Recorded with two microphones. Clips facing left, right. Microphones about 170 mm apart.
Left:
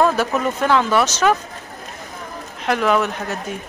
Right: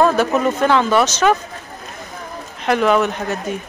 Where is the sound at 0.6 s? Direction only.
Centre (ahead or behind).